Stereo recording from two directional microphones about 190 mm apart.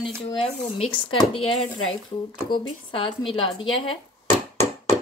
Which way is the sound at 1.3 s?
30° left (ahead or behind).